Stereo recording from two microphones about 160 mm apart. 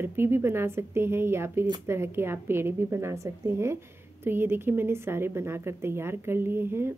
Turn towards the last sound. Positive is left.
turn(degrees=-15)  # may be behind; listen again after turning